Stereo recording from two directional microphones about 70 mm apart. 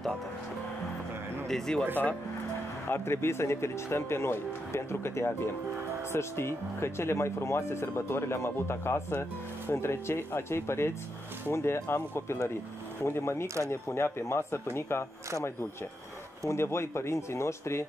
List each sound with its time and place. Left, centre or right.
1.5 s speech: centre
2.9 s speech: left
16.4 s speech: left